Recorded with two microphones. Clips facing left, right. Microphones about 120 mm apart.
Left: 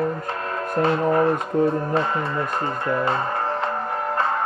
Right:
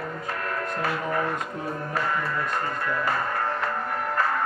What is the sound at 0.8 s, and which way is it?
Speech, 25° left (ahead or behind).